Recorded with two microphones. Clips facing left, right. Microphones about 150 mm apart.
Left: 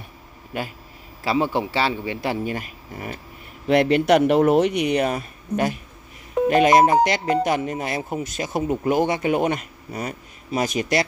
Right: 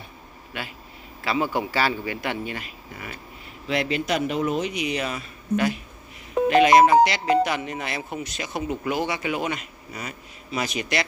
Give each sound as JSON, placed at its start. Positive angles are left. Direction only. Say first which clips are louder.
{"t": 0.5, "sound": "speech", "louder": "left 6 dB", "side_deg": 45}
{"t": 1.2, "sound": "a man's voice", "louder": "left 3 dB", "side_deg": 30}
{"t": 2.4, "sound": "speech", "louder": "left 5 dB", "side_deg": 40}
{"t": 3.6, "sound": "speech", "louder": "left 8 dB", "side_deg": 55}